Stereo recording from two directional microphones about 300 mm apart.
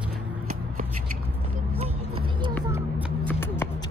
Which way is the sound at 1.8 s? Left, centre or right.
Right.